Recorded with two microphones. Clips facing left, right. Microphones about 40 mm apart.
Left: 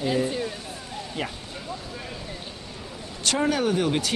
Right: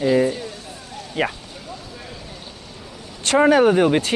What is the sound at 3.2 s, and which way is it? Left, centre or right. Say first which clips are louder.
Speech: right 9 dB; right.